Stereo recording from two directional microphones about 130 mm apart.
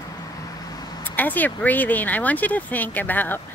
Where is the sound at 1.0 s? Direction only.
15° left (ahead or behind).